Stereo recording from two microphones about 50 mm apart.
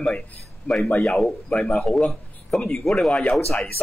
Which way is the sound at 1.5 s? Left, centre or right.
Left.